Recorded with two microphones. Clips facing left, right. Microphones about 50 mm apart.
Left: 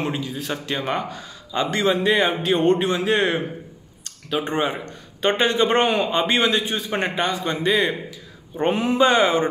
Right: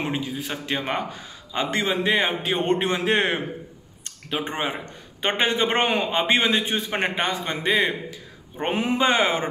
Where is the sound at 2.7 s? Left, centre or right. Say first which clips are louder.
Even; right.